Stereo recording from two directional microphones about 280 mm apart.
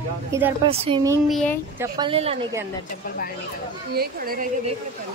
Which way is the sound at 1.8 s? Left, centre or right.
Centre.